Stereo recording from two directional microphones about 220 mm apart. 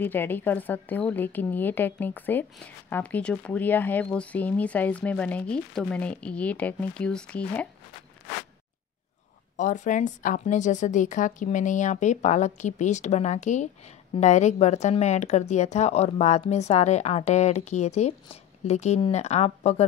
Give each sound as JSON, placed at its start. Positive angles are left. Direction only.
{"t": 0.0, "sound": "a woman's voice", "side_deg": 10}
{"t": 9.6, "sound": "speech", "side_deg": 35}